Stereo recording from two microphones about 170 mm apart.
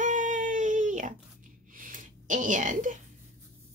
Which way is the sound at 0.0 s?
50° right (ahead or behind).